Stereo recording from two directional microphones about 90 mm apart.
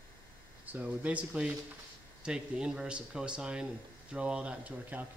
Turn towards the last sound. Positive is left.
turn(degrees=-15)  # may be behind; listen again after turning